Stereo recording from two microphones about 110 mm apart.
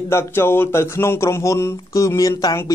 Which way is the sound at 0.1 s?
20° left (ahead or behind).